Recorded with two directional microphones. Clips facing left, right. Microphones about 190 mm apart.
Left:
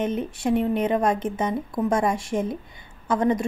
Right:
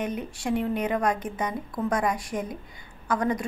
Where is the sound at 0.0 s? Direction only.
25° left (ahead or behind).